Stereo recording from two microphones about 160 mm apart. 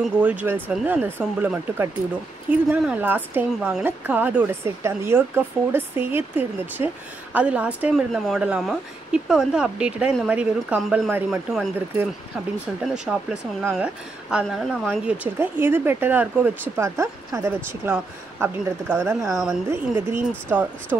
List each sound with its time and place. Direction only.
0.0 s a woman's voice: 10° right (ahead or behind)